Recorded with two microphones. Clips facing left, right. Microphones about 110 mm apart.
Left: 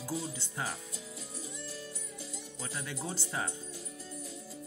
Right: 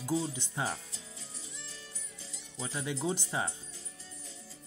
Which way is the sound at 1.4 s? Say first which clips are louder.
Left 7 dB; 45° left (ahead or behind).